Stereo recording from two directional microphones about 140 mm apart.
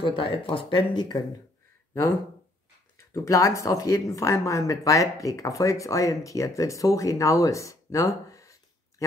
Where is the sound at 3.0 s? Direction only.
20° left (ahead or behind).